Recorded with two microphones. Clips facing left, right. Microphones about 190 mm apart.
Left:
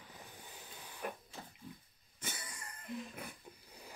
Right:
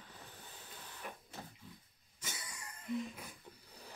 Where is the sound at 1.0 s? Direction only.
55° left (ahead or behind).